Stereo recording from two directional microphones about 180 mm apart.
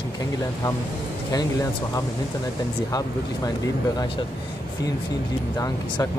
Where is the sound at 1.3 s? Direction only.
20° left (ahead or behind).